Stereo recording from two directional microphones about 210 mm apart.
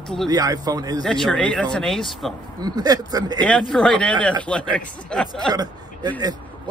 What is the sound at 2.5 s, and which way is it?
Speech, 20° right (ahead or behind).